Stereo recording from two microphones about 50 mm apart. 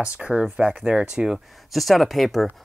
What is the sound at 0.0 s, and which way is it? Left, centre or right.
Speech, right.